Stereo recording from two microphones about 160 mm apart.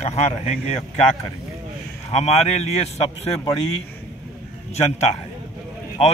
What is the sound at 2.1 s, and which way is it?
A man's voice, 40° left (ahead or behind).